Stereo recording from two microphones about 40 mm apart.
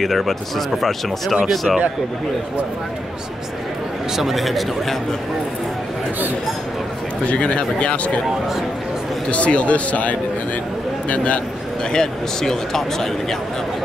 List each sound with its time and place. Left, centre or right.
0.0 s speech: centre
4.2 s speech: centre
7.2 s speech: left
9.3 s speech: left
11.9 s speech: centre